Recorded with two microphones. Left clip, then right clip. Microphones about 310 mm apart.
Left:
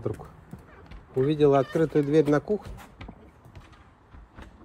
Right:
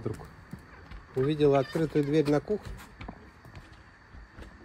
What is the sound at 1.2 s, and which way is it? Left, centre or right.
Speech, centre.